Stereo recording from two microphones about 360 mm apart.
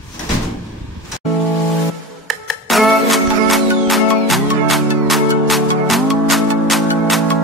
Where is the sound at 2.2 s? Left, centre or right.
Centre.